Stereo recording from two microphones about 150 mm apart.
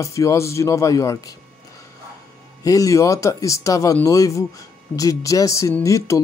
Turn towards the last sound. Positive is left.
turn(degrees=20)  # may be behind; listen again after turning